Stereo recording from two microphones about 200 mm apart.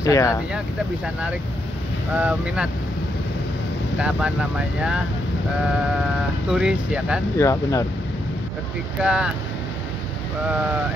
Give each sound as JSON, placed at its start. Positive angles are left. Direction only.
{"t": 0.0, "sound": "speech", "side_deg": 15}
{"t": 2.1, "sound": "speech", "side_deg": -5}
{"t": 4.0, "sound": "speech", "side_deg": -5}
{"t": 6.5, "sound": "speech", "side_deg": -5}
{"t": 7.3, "sound": "speech", "side_deg": 15}
{"t": 9.0, "sound": "speech", "side_deg": -5}